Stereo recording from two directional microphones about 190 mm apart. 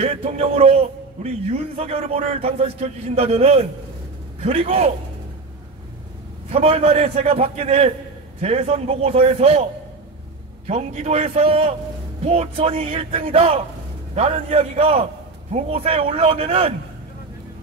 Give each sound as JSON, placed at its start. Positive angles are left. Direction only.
{"t": 0.0, "sound": "a man's voice", "side_deg": -30}
{"t": 6.5, "sound": "a man's voice", "side_deg": -30}
{"t": 10.7, "sound": "a man's voice", "side_deg": -35}